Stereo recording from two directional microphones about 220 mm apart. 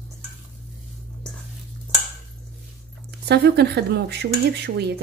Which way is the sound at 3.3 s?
50° right (ahead or behind).